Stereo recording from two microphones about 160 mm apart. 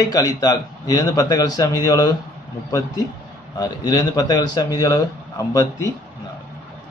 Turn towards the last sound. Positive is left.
turn(degrees=20)  # may be behind; listen again after turning